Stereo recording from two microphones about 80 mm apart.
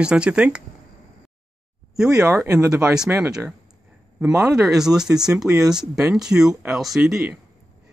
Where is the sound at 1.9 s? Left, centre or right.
Centre.